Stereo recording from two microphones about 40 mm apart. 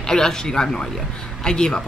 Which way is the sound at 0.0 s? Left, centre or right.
Centre.